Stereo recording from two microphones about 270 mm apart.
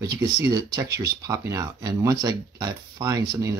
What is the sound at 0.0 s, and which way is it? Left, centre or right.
Speech, centre.